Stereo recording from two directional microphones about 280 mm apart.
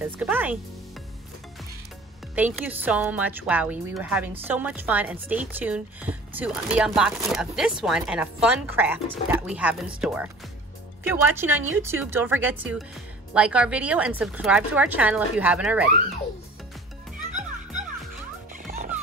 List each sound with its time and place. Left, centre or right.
0.0 s a woman's voice: centre
2.3 s a woman's voice: centre
18.5 s music: right